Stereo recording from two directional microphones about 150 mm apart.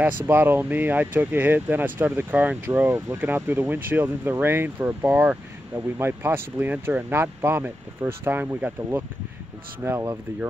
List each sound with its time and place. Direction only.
0.3 s speech: 15° right (ahead or behind)